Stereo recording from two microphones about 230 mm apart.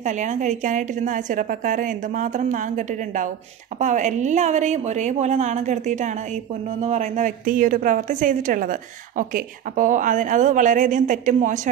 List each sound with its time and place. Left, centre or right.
0.0 s a woman's voice: right